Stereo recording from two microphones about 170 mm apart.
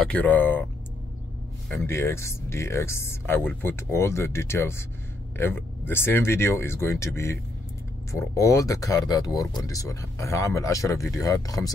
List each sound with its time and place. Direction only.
0.0 s speech: 10° left (ahead or behind)
1.8 s speech: 15° left (ahead or behind)